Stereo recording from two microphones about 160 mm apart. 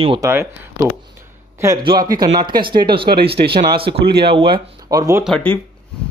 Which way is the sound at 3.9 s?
90° right.